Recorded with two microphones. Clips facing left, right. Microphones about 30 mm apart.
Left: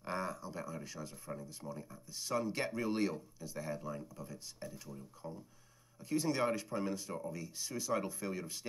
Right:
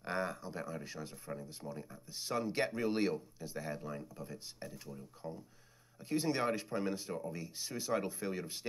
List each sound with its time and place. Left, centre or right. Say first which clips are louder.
0.0 s a sound: right 2 dB; centre
0.8 s speech: right 1 dB; right
5.9 s speech: even; right